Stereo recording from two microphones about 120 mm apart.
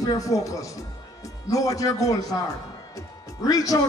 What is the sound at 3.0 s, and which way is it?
Music, 30° left (ahead or behind).